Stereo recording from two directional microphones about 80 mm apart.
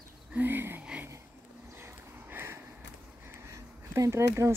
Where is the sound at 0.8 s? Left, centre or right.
Centre.